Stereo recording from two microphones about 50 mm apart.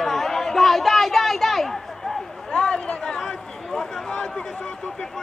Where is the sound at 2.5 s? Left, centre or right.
Centre.